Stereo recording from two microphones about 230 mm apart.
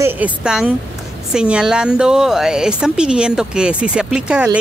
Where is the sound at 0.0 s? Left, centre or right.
Centre.